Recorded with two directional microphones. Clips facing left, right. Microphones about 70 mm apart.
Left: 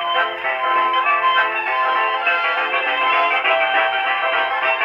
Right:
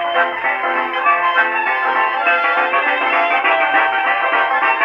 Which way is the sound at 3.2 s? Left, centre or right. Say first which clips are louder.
Right 2 dB; right.